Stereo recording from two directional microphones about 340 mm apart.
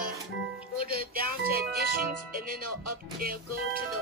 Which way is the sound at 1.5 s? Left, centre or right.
Right.